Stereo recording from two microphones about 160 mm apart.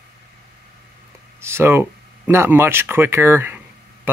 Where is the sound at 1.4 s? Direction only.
15° right (ahead or behind).